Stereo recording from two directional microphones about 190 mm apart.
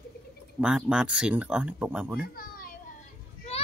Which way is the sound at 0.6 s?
5° right (ahead or behind).